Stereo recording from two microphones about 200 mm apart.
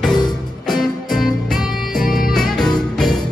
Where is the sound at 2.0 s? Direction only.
45° left (ahead or behind).